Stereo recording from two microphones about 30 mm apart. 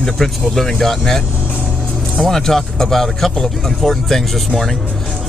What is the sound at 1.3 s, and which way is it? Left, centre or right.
Vehicle, right.